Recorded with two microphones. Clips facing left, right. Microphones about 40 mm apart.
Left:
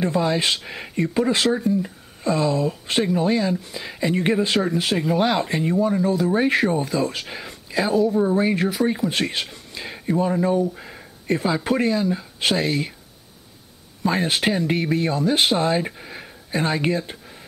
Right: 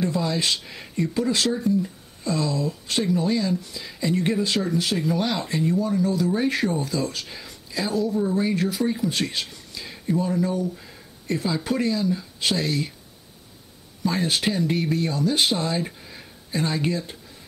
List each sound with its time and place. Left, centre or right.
0.0 s speech: left
14.0 s speech: left